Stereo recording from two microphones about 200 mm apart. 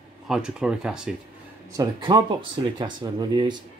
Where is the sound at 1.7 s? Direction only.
20° right (ahead or behind).